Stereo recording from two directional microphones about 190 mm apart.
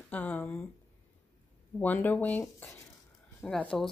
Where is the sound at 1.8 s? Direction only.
10° left (ahead or behind).